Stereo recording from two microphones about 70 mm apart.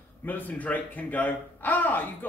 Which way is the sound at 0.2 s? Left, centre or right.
Left.